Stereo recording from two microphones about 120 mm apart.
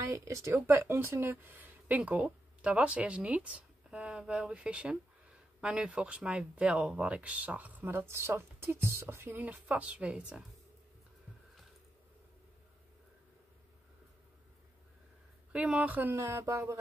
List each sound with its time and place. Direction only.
0.0 s speech: 25° right (ahead or behind); by 10.4 s 10° right (ahead or behind)
15.5 s speech: 10° right (ahead or behind)